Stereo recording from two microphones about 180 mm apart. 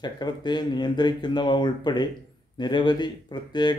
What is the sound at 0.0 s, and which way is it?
Speech, 25° left (ahead or behind).